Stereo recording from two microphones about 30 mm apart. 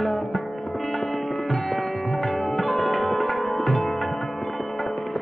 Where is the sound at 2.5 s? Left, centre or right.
Centre.